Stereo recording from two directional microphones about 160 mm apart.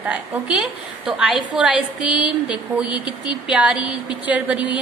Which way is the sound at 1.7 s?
30° left (ahead or behind).